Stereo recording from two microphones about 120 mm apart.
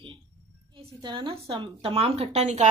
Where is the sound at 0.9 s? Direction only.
35° right (ahead or behind); by 2.4 s 55° right (ahead or behind).